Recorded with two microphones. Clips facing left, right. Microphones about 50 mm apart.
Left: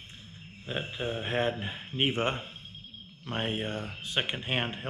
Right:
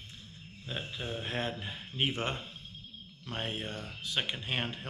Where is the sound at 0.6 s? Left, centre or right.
Left.